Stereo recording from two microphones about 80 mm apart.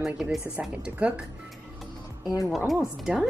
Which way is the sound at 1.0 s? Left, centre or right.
Centre.